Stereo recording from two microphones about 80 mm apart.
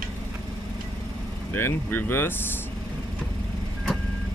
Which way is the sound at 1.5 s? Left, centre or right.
Left.